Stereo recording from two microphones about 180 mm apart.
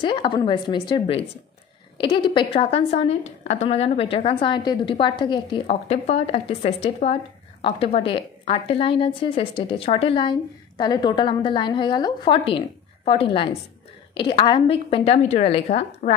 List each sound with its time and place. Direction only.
0.0 s a woman's voice: 25° left (ahead or behind)